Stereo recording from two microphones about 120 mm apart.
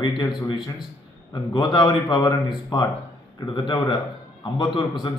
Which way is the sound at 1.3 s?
40° left (ahead or behind).